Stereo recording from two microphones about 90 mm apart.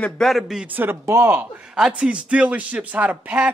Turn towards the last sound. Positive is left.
turn(degrees=-15)  # may be behind; listen again after turning